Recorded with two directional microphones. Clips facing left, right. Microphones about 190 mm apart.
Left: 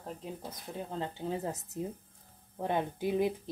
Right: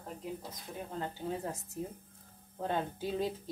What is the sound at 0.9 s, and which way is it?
A woman's voice, 25° left (ahead or behind).